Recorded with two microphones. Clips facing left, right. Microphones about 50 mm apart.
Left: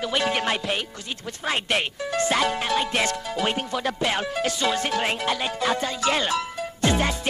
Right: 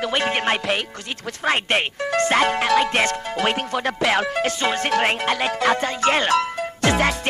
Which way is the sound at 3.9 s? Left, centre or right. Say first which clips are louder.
Right 5 dB; right.